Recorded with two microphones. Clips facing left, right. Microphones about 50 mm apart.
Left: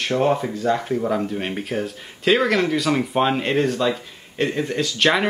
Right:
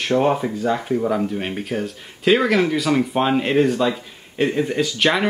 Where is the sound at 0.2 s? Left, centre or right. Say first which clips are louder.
Right 1 dB; centre.